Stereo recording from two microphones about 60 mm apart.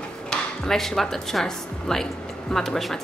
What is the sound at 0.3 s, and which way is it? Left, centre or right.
Speech, centre.